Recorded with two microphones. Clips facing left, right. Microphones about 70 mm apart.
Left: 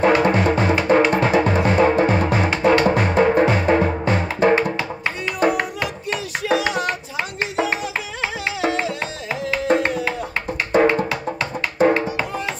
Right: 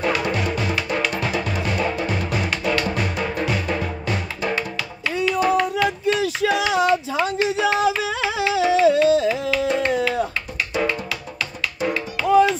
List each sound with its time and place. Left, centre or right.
0.0 s music: left
10.7 s music: left